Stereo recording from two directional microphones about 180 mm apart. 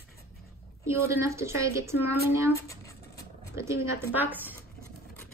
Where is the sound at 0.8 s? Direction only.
15° right (ahead or behind).